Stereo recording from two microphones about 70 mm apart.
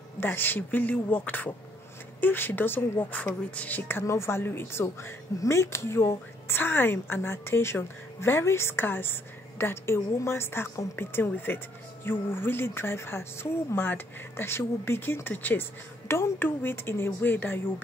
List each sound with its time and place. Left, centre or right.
0.2 s speech: left
4.0 s a woman's voice: left
6.5 s a woman's voice: left